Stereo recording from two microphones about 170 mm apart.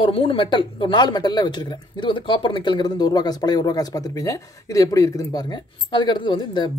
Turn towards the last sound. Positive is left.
turn(degrees=25)  # may be behind; listen again after turning